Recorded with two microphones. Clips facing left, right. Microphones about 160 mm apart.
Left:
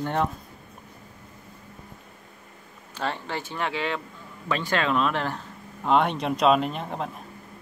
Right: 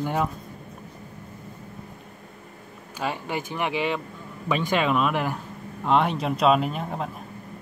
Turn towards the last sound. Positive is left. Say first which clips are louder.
# right 1 dB
turn(degrees=0)  # may be behind; listen again after turning